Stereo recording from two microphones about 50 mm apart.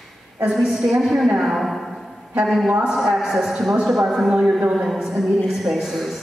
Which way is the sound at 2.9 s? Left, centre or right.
Centre.